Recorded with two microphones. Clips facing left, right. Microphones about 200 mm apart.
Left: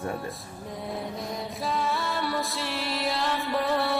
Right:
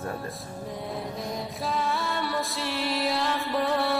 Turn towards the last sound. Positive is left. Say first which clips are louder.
# even
turn(degrees=0)  # may be behind; listen again after turning